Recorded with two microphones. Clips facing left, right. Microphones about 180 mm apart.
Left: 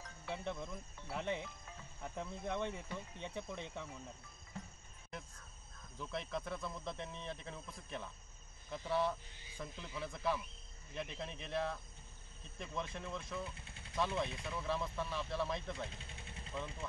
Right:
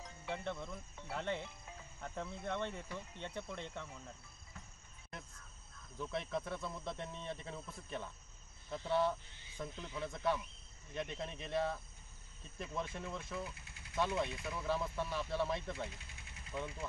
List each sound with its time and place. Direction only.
0.0 s music: 15° right (ahead or behind)
0.4 s speech: 15° left (ahead or behind)
5.9 s speech: centre (ahead or behind)
15.9 s vehicle: 30° left (ahead or behind)